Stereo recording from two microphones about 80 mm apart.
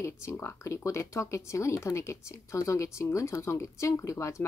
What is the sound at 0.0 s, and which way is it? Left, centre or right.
Speech, left.